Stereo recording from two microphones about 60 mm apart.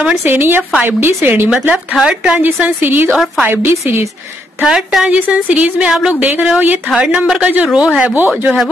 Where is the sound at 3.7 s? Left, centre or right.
Right.